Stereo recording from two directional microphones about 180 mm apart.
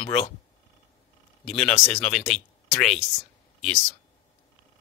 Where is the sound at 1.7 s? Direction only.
5° left (ahead or behind).